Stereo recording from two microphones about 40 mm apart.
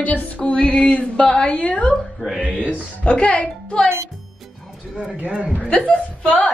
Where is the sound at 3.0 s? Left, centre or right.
Left.